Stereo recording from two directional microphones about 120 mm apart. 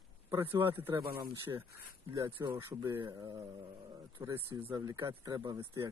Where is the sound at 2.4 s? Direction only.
30° right (ahead or behind).